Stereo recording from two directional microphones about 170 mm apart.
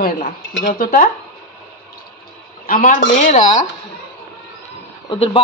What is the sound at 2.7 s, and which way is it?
Speech, 50° left (ahead or behind).